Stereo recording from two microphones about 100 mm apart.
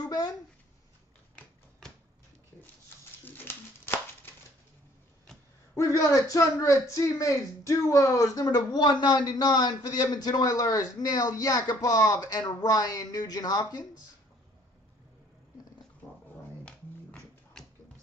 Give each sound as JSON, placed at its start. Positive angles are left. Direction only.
{"t": 0.0, "sound": "a sound", "side_deg": 40}
{"t": 3.3, "sound": "patter", "side_deg": 20}
{"t": 5.8, "sound": "a woman's voice", "side_deg": 35}
{"t": 16.6, "sound": "music", "side_deg": 10}